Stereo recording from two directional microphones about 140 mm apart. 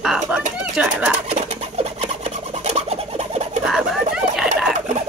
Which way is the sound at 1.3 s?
50° right (ahead or behind).